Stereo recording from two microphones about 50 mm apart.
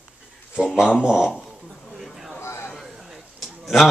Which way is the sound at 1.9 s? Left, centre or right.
Centre.